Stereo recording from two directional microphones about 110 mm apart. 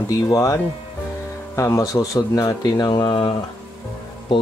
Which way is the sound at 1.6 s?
30° left (ahead or behind).